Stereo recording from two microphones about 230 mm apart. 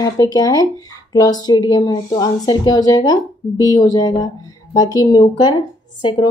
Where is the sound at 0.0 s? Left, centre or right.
Centre.